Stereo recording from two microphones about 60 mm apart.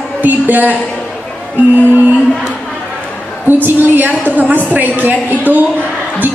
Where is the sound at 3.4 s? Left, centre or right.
Right.